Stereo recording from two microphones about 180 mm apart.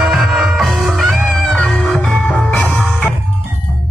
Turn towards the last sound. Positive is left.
turn(degrees=0)  # may be behind; listen again after turning